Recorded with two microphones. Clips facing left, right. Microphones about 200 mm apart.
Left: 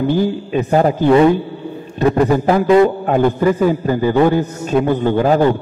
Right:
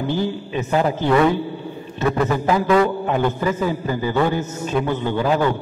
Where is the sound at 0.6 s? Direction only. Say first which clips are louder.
Left 6 dB; 40° left (ahead or behind).